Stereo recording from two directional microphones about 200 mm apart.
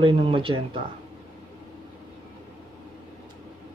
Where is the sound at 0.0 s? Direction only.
25° right (ahead or behind).